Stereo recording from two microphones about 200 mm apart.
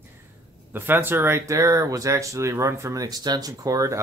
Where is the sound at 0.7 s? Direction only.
10° right (ahead or behind).